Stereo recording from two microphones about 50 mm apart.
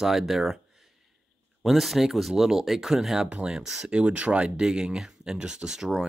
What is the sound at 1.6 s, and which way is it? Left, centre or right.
Speech, centre.